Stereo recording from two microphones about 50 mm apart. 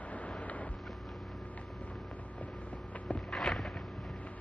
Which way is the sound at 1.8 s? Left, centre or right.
Left.